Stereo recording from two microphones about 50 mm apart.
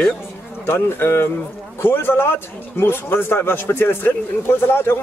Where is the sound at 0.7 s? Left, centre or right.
Left.